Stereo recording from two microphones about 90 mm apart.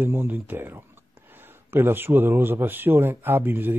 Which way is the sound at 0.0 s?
25° right (ahead or behind).